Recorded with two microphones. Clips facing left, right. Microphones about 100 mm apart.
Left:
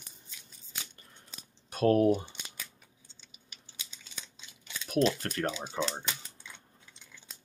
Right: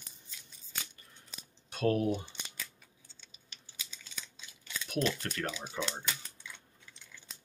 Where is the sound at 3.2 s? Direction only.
10° left (ahead or behind).